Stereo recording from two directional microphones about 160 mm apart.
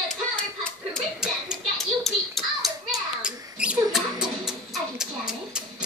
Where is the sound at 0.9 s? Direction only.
Centre (ahead or behind).